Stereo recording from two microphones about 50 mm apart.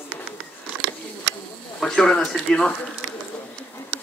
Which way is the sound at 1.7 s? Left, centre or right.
Centre.